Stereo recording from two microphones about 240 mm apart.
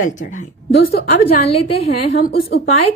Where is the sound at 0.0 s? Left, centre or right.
Left.